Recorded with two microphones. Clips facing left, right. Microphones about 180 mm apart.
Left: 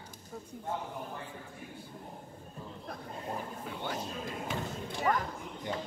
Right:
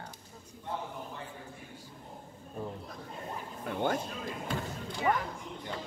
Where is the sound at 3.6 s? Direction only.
55° right (ahead or behind).